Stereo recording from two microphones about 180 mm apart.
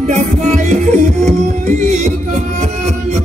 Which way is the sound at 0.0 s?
40° right (ahead or behind).